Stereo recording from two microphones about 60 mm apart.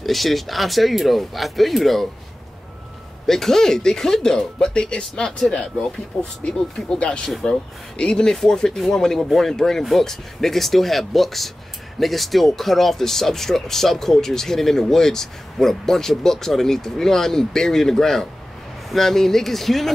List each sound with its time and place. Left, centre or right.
0.0 s speech: centre
3.3 s speech: centre
7.2 s speech: centre